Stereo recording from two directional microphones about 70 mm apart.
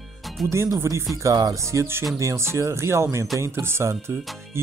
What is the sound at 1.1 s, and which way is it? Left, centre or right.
Speech, right.